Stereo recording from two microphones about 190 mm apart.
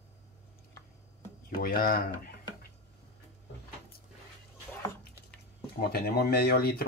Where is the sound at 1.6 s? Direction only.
50° left (ahead or behind).